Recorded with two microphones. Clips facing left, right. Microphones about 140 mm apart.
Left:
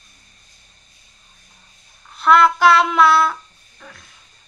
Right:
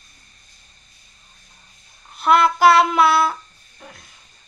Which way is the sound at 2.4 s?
5° right (ahead or behind).